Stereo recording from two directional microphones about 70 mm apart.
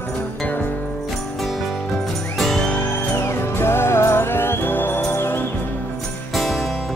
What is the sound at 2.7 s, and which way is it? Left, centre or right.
Music, left.